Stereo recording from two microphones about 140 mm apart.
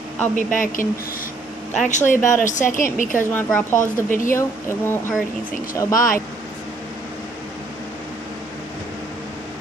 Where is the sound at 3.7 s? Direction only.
70° left (ahead or behind).